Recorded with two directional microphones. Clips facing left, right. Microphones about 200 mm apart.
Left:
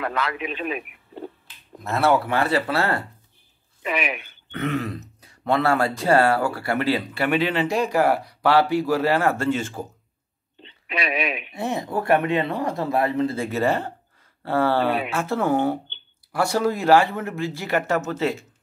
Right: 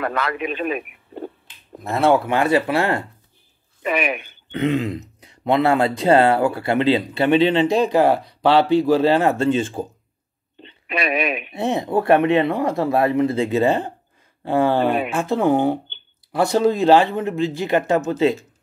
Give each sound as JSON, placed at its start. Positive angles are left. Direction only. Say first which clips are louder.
{"t": 0.0, "sound": "speech", "louder": "right 3 dB", "side_deg": -50}
{"t": 1.9, "sound": "speech", "louder": "right 3 dB", "side_deg": -15}
{"t": 3.8, "sound": "speech", "louder": "right 5 dB", "side_deg": -50}
{"t": 4.5, "sound": "speech", "louder": "right 5 dB", "side_deg": -20}
{"t": 10.6, "sound": "speech", "louder": "right 4 dB", "side_deg": -50}
{"t": 11.5, "sound": "speech", "louder": "right 6 dB", "side_deg": -20}